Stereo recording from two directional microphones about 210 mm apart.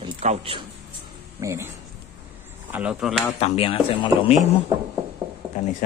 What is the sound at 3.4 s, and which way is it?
Speech, 25° left (ahead or behind).